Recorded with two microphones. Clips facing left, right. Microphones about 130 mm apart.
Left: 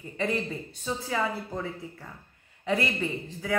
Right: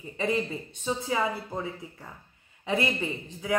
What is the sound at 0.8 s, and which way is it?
Speech, 20° right (ahead or behind).